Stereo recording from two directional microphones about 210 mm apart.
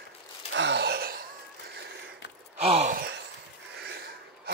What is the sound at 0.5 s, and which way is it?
Gasp, 55° right (ahead or behind).